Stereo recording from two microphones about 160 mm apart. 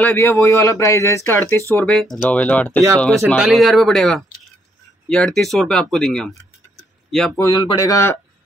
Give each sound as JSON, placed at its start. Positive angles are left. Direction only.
{"t": 0.0, "sound": "speech", "side_deg": 15}
{"t": 1.9, "sound": "speech", "side_deg": 0}
{"t": 7.3, "sound": "speech", "side_deg": 15}